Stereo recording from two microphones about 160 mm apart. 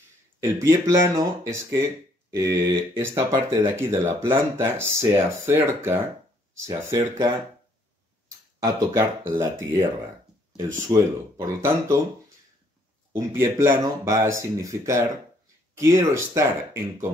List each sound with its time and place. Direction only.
0.4 s speech: 15° right (ahead or behind)
8.5 s speech: 20° right (ahead or behind)
10.9 s speech: 20° right (ahead or behind)